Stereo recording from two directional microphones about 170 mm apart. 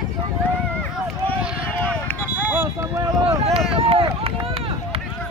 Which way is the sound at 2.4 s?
15° right (ahead or behind).